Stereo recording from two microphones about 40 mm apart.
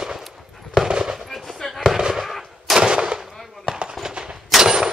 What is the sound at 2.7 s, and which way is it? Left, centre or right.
Gunshot, centre.